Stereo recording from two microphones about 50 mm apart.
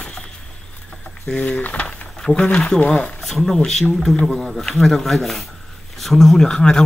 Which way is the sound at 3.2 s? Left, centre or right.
Centre.